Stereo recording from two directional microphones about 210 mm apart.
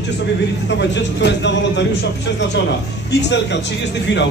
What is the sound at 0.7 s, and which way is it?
A man's voice, 55° left (ahead or behind).